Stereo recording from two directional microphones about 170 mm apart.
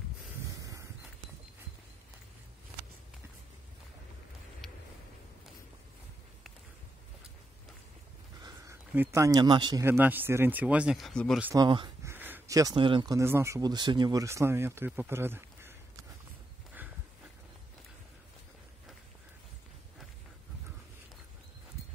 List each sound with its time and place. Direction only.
4.6 s a sound: centre (ahead or behind)
8.4 s a sound: 20° right (ahead or behind)
8.9 s speech: 15° right (ahead or behind)
9.8 s speech: 10° right (ahead or behind)
11.5 s speech: 25° right (ahead or behind)
12.1 s speech: 10° right (ahead or behind)